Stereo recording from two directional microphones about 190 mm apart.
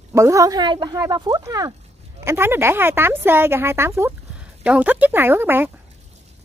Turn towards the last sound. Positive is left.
turn(degrees=-10)  # may be behind; listen again after turning